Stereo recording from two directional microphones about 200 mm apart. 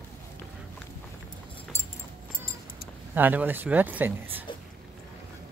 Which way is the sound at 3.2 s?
10° right (ahead or behind).